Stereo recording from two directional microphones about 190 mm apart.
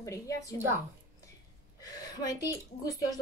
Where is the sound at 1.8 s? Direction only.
20° left (ahead or behind).